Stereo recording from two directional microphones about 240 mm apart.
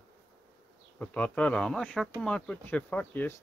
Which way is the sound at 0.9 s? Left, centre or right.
Centre.